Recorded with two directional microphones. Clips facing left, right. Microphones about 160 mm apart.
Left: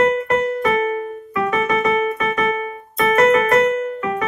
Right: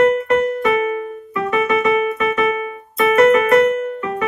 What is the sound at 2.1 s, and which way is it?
Keyboard, 35° left (ahead or behind).